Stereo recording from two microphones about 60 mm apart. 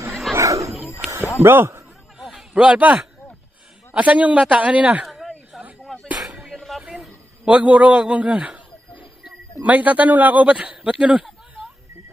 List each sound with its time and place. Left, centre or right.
0.4 s wild animals: right
1.4 s speech: right
2.1 s a sound: centre
2.5 s a man's voice: centre
5.0 s a sound: centre
7.4 s a man's voice: right